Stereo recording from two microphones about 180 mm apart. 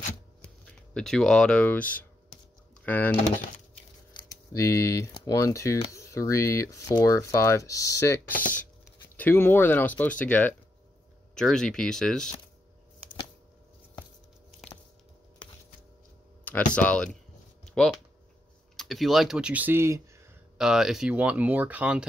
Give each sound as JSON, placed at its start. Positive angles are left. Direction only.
{"t": 0.9, "sound": "speech", "side_deg": 5}
{"t": 4.1, "sound": "speech", "side_deg": 25}
{"t": 16.7, "sound": "speech", "side_deg": 5}
{"t": 17.6, "sound": "a sound", "side_deg": 0}
{"t": 18.8, "sound": "speech", "side_deg": 0}
{"t": 20.5, "sound": "speech", "side_deg": -5}